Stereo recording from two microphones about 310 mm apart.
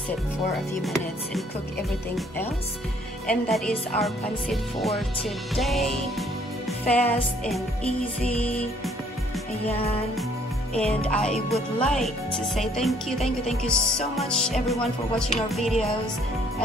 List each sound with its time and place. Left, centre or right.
0.8 s speech: centre
9.7 s music: centre
10.7 s speech: centre